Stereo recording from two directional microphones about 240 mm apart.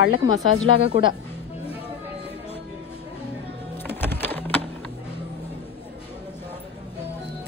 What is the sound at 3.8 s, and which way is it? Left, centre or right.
Music, centre.